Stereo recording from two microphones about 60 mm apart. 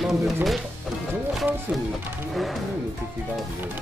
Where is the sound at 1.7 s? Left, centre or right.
Right.